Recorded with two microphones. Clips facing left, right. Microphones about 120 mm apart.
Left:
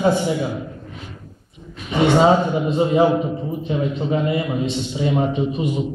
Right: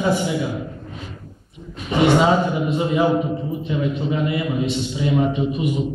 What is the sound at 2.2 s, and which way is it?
A man's voice, 30° left (ahead or behind).